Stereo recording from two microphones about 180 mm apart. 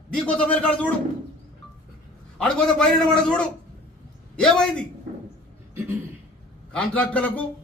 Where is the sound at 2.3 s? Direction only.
5° left (ahead or behind).